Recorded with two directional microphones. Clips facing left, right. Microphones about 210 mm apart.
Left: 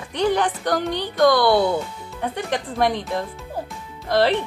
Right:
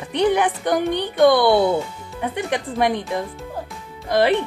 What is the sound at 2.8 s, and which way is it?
Speech, 15° right (ahead or behind).